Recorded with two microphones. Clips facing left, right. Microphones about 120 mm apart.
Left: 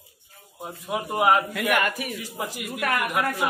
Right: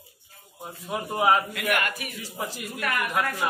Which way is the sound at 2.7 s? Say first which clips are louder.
Left 4 dB; 70° left (ahead or behind).